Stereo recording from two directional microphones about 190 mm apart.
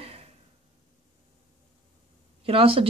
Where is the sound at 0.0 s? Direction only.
30° right (ahead or behind).